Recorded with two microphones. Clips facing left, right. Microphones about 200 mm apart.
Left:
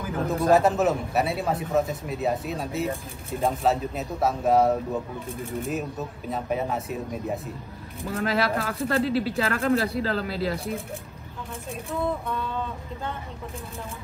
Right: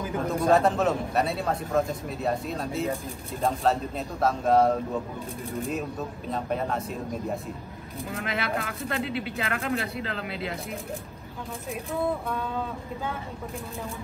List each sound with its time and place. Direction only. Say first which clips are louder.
0.3 s a man's voice: left 2 dB; 5° left (ahead or behind)
8.1 s speech: left 6 dB; 35° left (ahead or behind)